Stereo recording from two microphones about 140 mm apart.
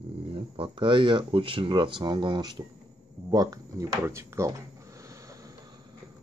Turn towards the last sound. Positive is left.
turn(degrees=-25)  # may be behind; listen again after turning